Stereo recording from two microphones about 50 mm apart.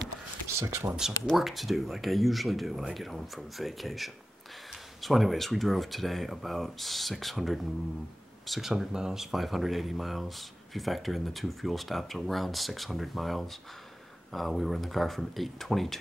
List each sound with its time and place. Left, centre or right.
0.6 s speech: right
1.3 s speech: centre